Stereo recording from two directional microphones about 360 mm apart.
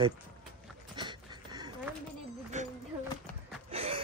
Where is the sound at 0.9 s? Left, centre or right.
Centre.